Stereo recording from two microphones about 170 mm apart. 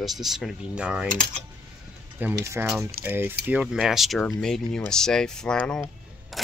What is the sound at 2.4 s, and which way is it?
Speech, 15° right (ahead or behind).